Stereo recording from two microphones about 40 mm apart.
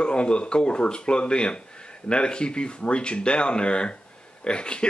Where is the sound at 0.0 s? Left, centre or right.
Left.